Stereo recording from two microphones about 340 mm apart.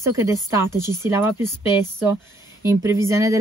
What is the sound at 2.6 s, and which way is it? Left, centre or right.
Speech, centre.